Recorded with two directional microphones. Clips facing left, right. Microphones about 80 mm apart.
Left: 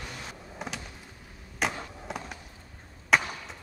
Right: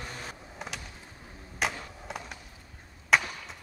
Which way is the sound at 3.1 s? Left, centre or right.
Centre.